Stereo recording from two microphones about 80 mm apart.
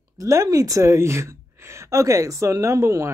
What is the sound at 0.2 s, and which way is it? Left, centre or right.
Speech, right.